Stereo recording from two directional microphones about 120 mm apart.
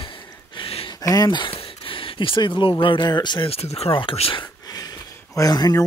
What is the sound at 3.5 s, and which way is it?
Speech, 60° left (ahead or behind).